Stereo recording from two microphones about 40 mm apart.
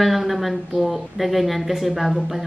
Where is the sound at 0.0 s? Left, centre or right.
Centre.